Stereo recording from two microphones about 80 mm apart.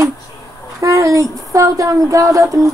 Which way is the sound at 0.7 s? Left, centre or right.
Right.